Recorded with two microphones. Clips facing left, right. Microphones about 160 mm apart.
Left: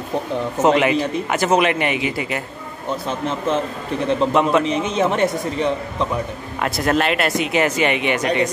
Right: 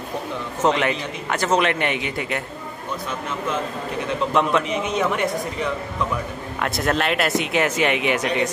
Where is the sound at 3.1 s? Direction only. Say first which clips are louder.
Left 5 dB; 30° left (ahead or behind).